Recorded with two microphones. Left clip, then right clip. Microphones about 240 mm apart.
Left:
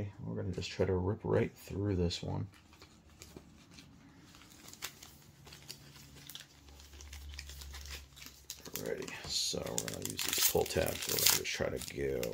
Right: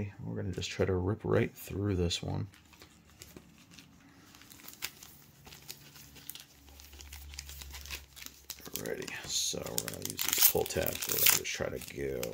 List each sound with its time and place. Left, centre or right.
0.4 s speech: right
8.7 s speech: right; by 12.3 s centre